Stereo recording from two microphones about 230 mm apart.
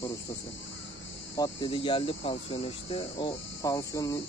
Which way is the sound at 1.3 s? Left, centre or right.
Centre.